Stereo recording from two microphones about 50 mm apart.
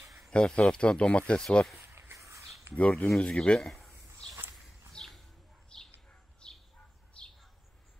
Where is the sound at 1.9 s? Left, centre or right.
Right.